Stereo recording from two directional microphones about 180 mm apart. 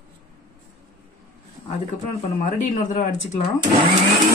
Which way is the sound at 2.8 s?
45° left (ahead or behind).